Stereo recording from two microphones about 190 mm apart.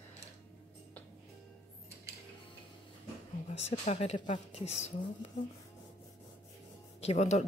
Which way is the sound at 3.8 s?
35° left (ahead or behind).